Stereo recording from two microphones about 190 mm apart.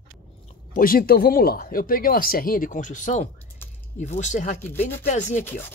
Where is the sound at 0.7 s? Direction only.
50° left (ahead or behind).